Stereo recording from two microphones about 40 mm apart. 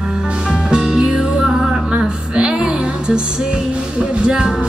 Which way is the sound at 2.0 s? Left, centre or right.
Right.